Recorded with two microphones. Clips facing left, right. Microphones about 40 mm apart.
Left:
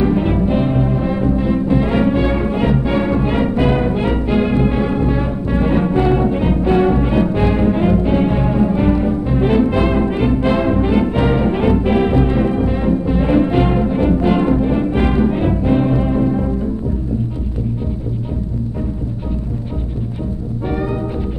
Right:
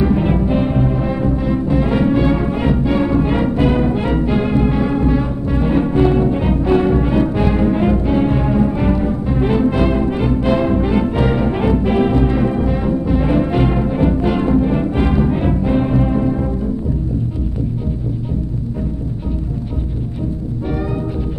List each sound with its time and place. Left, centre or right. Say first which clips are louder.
0.0 s music: even; centre
3.5 s music: right 1 dB; left
3.8 s music: right 1 dB; centre
9.7 s brass instrument: even; left
14.3 s music: left 1 dB; centre
20.6 s music: left 2 dB; centre